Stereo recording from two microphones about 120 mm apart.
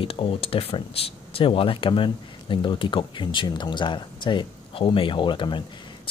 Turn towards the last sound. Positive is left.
turn(degrees=40)  # may be behind; listen again after turning